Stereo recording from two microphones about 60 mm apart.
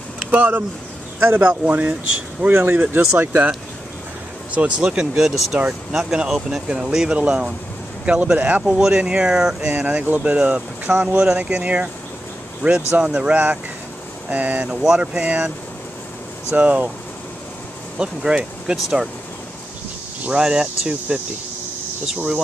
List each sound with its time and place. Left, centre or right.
0.2 s speech: right
4.6 s speech: centre
8.6 s speech: centre
13.0 s speech: centre
14.7 s speech: centre
16.5 s speech: right
17.9 s speech: centre
20.4 s speech: centre